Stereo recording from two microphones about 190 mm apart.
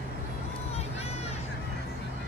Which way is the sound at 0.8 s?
35° left (ahead or behind).